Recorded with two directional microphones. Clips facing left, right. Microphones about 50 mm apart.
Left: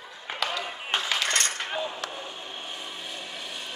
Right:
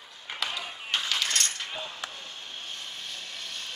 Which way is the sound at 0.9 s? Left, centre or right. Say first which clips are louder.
Left 2 dB; left.